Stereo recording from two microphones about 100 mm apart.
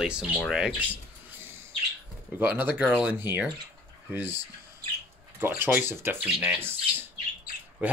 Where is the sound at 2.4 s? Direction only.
20° right (ahead or behind).